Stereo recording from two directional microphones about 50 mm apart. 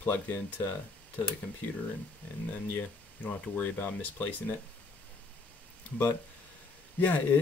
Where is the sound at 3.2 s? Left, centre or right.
Left.